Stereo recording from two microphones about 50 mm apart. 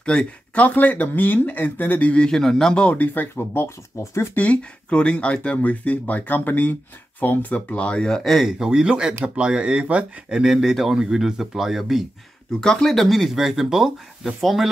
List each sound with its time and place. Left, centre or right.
0.0 s speech: left
2.2 s a man's voice: centre
2.9 s speech: left
3.5 s speech: left
4.4 s speech: left
8.2 s speech: centre
8.5 s a man's voice: centre
10.4 s a man's voice: centre
12.5 s speech: centre